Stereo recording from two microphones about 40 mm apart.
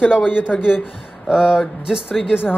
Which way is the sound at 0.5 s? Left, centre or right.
Left.